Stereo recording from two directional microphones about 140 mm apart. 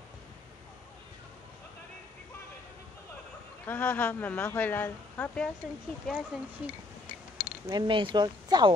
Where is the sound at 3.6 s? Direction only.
10° left (ahead or behind).